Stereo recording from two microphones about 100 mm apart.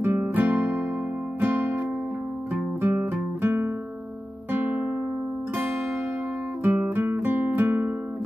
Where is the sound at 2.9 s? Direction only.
25° right (ahead or behind).